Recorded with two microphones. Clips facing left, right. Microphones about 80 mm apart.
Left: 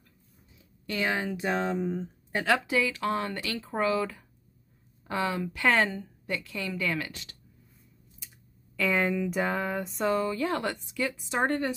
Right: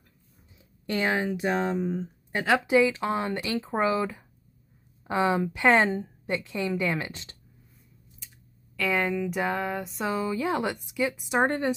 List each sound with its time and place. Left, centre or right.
0.8 s speech: right
1.8 s speech: centre
2.3 s speech: centre
8.7 s speech: centre
10.3 s speech: centre